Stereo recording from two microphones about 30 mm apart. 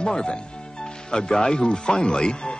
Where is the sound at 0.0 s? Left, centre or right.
Left.